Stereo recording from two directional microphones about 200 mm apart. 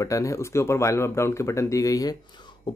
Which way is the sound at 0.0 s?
15° left (ahead or behind).